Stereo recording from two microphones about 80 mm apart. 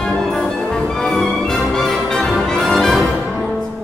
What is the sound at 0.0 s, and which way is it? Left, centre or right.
Music, centre.